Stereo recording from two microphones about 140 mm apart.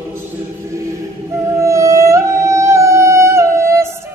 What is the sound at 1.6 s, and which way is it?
Music, 20° right (ahead or behind).